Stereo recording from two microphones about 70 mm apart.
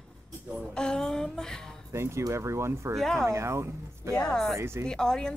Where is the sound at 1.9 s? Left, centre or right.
Right.